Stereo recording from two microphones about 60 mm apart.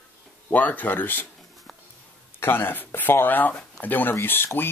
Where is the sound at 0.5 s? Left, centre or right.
Left.